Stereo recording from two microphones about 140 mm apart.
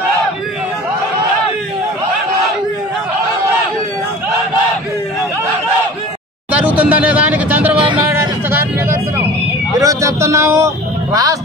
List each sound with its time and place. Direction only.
6.5 s vehicle: 10° right (ahead or behind)